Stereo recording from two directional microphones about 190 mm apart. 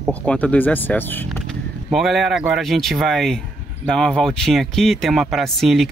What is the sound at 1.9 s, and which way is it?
Speech, centre (ahead or behind).